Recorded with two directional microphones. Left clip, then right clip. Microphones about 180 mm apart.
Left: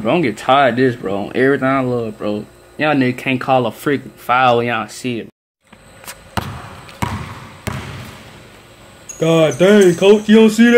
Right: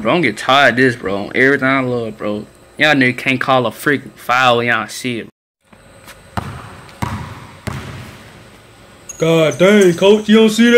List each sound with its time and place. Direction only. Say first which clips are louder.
0.0 s speech: right 1 dB; 10° left (ahead or behind)
7.0 s basketball bounce: left 1 dB; 25° left (ahead or behind)
7.7 s basketball bounce: left 1 dB; 15° left (ahead or behind)
9.2 s speech: right 1 dB; centre (ahead or behind)